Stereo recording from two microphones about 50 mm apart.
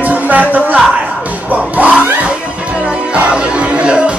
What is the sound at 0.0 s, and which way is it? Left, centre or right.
Music, right.